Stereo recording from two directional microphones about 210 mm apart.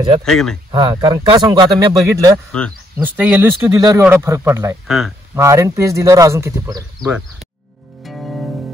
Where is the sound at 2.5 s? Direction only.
5° left (ahead or behind).